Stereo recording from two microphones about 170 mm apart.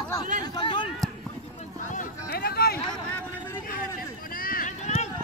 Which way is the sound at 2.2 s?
65° left (ahead or behind).